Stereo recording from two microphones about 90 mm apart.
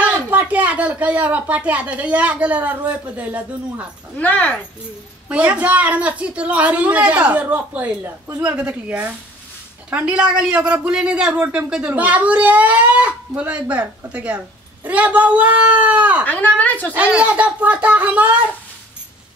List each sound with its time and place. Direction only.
0.0 s a man's voice: 15° right (ahead or behind)
4.2 s speech: 20° left (ahead or behind)
5.3 s a man's voice: 15° right (ahead or behind)
16.3 s speech: 20° left (ahead or behind)
16.9 s a man's voice: 15° right (ahead or behind)